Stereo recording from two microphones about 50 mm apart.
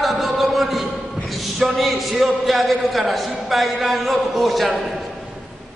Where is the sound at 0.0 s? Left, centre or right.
Centre.